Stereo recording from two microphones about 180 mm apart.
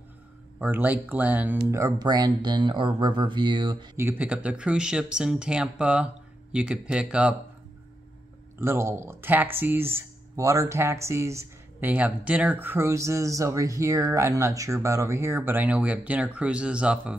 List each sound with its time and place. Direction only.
0.6 s speech: 10° right (ahead or behind); by 3.9 s 25° right (ahead or behind)
3.9 s speech: 10° right (ahead or behind)
8.5 s speech: 15° right (ahead or behind)